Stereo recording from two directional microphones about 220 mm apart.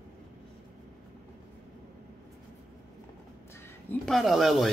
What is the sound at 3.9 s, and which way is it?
Speech, centre (ahead or behind).